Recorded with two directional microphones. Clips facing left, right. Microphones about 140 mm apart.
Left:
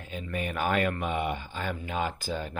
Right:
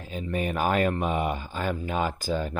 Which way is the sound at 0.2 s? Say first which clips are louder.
Right 4 dB; 35° right (ahead or behind).